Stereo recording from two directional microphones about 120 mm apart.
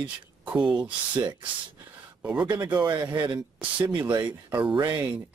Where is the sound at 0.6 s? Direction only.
40° right (ahead or behind).